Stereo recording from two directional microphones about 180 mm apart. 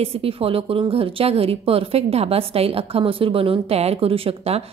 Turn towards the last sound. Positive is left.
turn(degrees=-35)  # may be behind; listen again after turning